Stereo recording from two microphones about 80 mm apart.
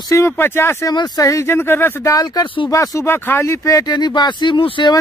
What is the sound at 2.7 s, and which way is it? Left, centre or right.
Speech, left.